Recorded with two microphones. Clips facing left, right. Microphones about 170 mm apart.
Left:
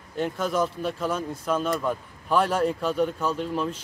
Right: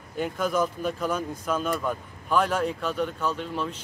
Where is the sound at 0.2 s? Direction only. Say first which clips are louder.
Even; 5° right (ahead or behind).